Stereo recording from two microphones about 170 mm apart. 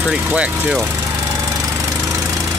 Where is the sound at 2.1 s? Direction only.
20° right (ahead or behind).